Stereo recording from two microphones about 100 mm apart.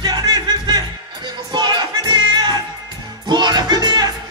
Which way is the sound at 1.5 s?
50° right (ahead or behind).